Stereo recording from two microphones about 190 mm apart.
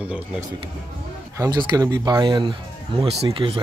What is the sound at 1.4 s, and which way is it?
Speech, 20° right (ahead or behind).